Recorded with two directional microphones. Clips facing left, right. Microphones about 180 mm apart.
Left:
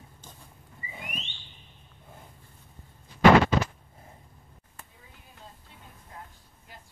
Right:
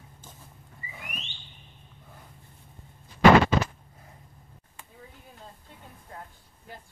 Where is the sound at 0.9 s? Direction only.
20° left (ahead or behind).